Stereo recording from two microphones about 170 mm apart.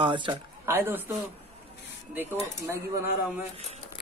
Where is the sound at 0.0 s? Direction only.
30° right (ahead or behind).